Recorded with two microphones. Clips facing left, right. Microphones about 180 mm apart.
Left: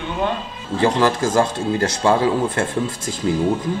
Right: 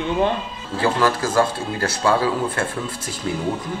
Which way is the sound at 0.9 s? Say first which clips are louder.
Even; 25° left (ahead or behind).